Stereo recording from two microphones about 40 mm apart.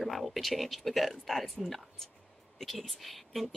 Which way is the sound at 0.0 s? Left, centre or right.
Centre.